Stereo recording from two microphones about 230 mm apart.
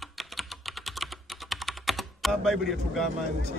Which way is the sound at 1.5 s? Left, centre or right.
Centre.